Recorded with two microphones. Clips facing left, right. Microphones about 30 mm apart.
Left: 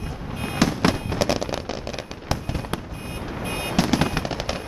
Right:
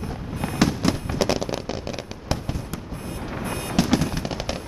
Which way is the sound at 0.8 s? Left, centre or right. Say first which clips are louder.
Left 2 dB; left.